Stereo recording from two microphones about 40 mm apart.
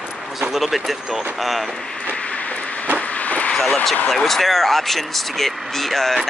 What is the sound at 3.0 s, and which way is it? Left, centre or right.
Vehicle, left.